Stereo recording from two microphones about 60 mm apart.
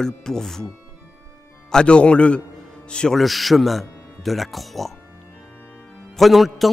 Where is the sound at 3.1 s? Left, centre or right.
Centre.